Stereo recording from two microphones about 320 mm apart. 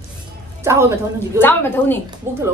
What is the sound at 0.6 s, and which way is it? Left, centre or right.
Music, centre.